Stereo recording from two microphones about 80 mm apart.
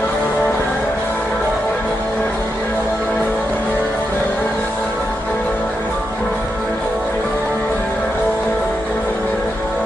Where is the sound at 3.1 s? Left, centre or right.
Left.